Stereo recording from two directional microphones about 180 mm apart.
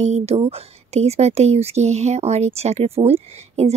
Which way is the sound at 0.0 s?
35° right (ahead or behind).